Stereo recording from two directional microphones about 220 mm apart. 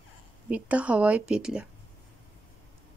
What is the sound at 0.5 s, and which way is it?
A woman's voice, 5° right (ahead or behind).